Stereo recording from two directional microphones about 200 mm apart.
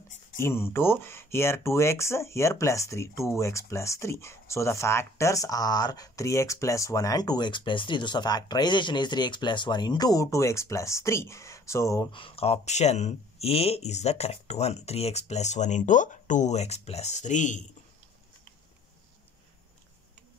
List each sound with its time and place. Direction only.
0.4 s speech: 10° left (ahead or behind); by 17.6 s 40° left (ahead or behind)